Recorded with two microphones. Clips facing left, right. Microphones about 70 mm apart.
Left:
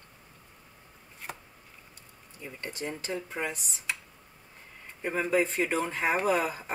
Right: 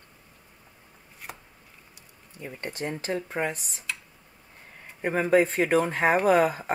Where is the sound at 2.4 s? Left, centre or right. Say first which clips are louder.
Right 4 dB; right.